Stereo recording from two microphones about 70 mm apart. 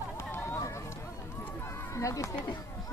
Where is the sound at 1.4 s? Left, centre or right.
Left.